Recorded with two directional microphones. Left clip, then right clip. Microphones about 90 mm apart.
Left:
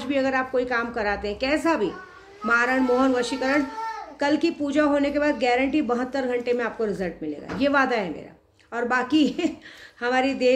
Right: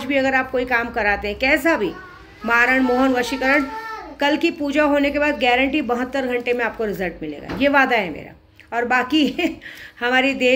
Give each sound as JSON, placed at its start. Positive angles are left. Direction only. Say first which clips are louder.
{"t": 0.0, "sound": "a woman's voice", "louder": "right 5 dB", "side_deg": 45}